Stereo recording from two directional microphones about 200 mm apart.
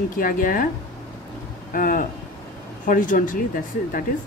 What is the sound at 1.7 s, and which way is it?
A woman's voice, 45° left (ahead or behind).